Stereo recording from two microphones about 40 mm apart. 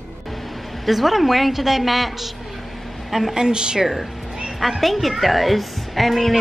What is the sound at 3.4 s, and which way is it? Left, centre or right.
Speech, right.